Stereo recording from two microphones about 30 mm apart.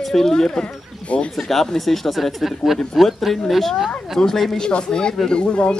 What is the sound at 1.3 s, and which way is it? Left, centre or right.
Speech, centre.